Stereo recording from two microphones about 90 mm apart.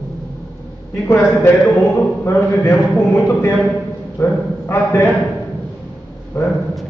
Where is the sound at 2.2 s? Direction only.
30° left (ahead or behind).